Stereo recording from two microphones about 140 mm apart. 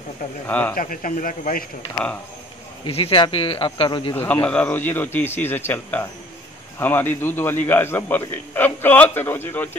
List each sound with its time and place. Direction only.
0.5 s a man's voice: 10° left (ahead or behind)
0.7 s speech: 70° left (ahead or behind)
2.9 s speech: 40° left (ahead or behind)
4.1 s a man's voice: 15° left (ahead or behind)